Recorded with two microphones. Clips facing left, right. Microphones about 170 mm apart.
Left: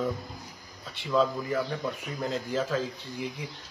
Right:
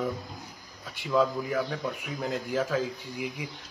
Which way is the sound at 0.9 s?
10° right (ahead or behind).